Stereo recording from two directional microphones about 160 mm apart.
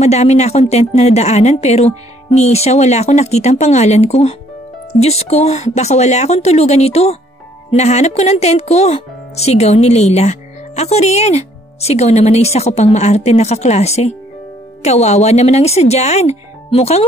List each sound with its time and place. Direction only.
0.0 s a woman's voice: 45° left (ahead or behind)